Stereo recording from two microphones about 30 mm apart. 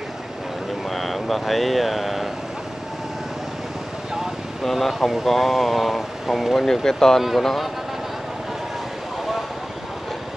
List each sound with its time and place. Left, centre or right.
0.8 s speech: centre
4.6 s speech: centre
6.6 s speech: centre